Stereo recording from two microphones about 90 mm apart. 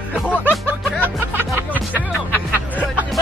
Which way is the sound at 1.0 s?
25° right (ahead or behind).